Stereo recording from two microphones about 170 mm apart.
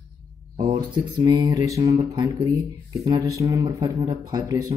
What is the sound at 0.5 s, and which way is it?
Speech, 30° right (ahead or behind).